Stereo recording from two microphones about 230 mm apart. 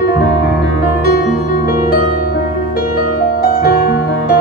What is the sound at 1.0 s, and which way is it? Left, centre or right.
Music, left.